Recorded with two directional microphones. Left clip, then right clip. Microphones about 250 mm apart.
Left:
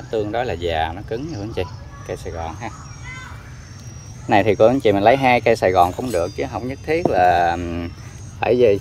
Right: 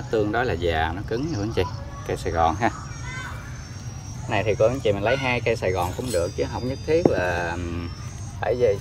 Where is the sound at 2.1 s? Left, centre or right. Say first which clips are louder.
Right 6 dB; centre.